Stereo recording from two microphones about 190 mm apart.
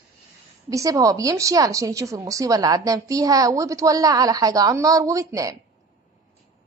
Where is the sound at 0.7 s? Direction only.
20° right (ahead or behind).